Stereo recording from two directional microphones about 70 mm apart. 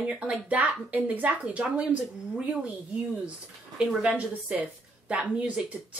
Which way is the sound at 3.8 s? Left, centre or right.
Centre.